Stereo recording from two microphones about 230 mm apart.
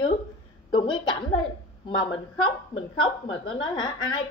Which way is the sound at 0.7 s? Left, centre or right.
Centre.